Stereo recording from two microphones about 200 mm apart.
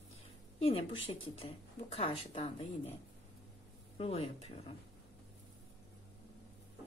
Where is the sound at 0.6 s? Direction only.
25° left (ahead or behind).